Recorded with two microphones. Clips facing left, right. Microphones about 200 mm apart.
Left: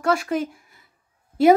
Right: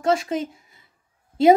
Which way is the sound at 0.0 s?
25° right (ahead or behind).